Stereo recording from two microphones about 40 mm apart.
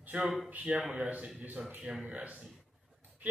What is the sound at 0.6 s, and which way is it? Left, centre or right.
Speech, right.